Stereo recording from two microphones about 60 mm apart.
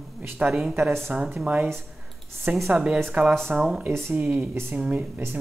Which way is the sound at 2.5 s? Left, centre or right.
Right.